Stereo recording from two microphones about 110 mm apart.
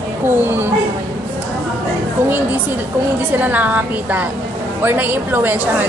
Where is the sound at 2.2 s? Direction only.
20° right (ahead or behind).